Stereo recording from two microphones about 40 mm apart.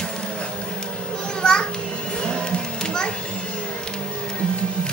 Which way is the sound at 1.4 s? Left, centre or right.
Left.